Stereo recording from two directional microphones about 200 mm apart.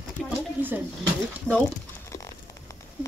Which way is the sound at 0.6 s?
10° right (ahead or behind).